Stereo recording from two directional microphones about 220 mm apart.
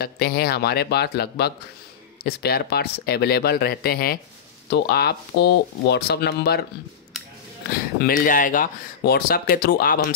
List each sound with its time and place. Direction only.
0.0 s speech: 45° left (ahead or behind)
7.7 s speech: 40° left (ahead or behind)